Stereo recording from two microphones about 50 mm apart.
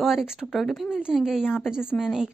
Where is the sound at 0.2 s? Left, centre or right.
Centre.